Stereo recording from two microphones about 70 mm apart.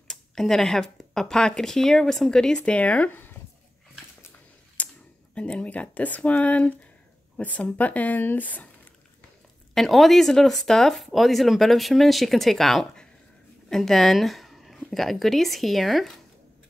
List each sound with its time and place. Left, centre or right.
0.1 s speech: centre; by 3.3 s left
4.8 s a sound: left
5.3 s speech: centre
9.8 s speech: centre